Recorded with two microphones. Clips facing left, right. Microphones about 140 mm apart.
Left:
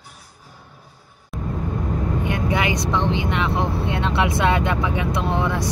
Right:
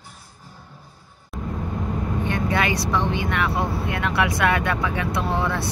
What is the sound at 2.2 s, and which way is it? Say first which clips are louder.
Speech: right 1 dB; 15° left (ahead or behind).